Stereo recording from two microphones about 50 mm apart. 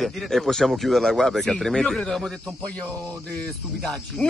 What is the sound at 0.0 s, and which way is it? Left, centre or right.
Speech, centre.